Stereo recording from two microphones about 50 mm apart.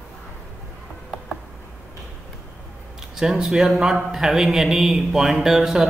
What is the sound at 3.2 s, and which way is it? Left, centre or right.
Speech, centre.